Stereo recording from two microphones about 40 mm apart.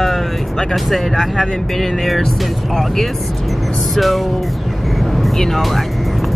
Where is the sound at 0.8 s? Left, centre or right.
Centre.